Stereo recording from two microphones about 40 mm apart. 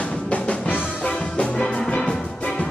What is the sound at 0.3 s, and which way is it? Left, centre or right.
Music, left.